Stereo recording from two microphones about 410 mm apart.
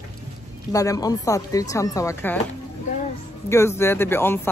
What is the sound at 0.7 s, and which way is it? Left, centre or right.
Speech, centre.